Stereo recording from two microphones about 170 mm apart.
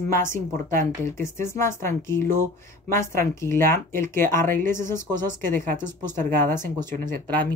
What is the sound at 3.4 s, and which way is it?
Speech, 15° left (ahead or behind).